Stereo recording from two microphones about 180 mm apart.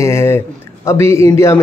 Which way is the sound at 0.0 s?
15° left (ahead or behind).